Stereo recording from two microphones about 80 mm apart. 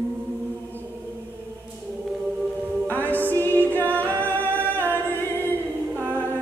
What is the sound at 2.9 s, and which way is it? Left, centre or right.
Music, left.